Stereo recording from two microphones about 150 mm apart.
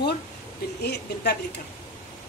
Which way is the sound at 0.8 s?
90° left.